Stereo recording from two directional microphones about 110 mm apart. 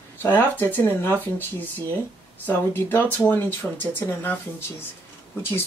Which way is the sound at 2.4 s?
20° left (ahead or behind).